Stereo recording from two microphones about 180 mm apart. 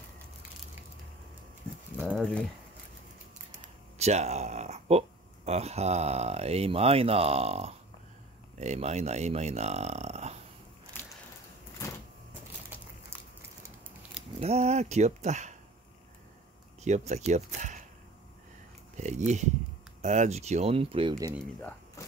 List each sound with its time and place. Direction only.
2.0 s speech: centre (ahead or behind)
3.5 s speech: 40° right (ahead or behind)
14.4 s speech: 35° right (ahead or behind)
16.8 s speech: 40° right (ahead or behind)
18.9 s speech: 40° right (ahead or behind)
21.4 s speech: 10° left (ahead or behind)